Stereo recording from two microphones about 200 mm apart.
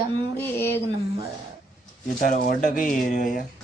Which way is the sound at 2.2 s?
40° left (ahead or behind).